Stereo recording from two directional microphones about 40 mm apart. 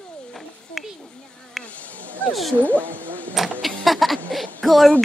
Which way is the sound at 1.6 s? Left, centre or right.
Left.